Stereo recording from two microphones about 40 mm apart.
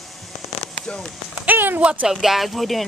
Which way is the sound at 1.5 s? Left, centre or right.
Right.